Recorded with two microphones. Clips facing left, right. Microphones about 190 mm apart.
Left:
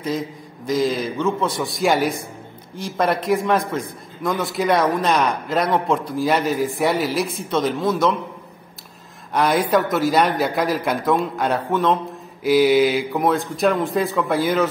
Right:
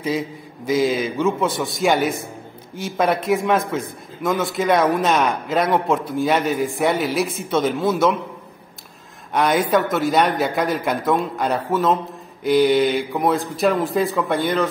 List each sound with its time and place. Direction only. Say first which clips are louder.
0.7 s a man's voice: right 1 dB; 5° right (ahead or behind)
9.3 s a man's voice: even; centre (ahead or behind)